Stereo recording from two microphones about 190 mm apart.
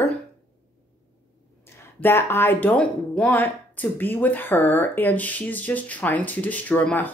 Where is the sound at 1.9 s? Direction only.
10° left (ahead or behind).